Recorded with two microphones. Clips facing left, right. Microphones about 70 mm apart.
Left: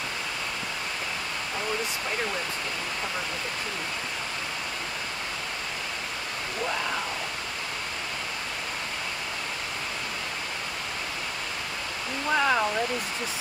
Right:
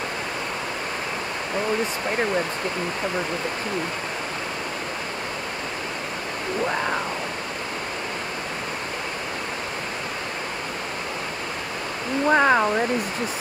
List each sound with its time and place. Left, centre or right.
12.3 s speech: right